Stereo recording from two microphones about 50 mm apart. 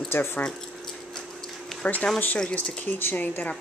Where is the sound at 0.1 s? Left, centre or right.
Left.